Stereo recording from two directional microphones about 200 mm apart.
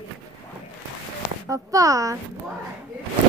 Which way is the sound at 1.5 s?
15° right (ahead or behind).